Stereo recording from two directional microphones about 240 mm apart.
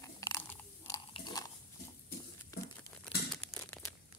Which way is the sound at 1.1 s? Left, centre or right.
Centre.